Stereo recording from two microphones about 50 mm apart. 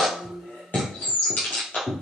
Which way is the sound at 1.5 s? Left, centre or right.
Centre.